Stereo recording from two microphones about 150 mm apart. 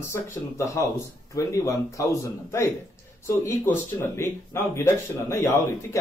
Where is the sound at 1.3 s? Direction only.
20° left (ahead or behind).